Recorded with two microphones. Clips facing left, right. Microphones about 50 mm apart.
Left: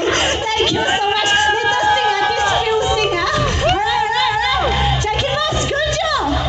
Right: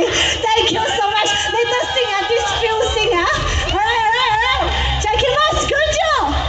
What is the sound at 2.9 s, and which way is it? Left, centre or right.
Children playing, right.